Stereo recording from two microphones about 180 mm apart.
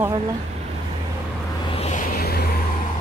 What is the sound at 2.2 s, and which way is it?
Vehicle, 60° left (ahead or behind).